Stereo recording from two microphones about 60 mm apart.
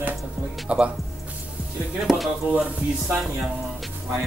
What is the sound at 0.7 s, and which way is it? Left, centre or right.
Speech, right.